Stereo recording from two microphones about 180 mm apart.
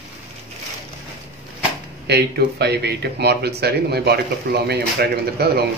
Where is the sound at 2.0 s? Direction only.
65° right (ahead or behind).